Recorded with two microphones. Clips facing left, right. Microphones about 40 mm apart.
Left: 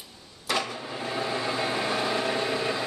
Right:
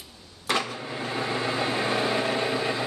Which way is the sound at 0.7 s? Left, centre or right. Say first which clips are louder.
Right 1 dB; centre.